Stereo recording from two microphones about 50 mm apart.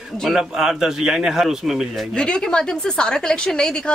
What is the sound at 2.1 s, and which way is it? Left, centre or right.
Speech, centre.